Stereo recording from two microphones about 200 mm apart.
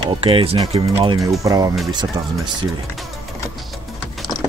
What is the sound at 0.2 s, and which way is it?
Speech, 30° right (ahead or behind).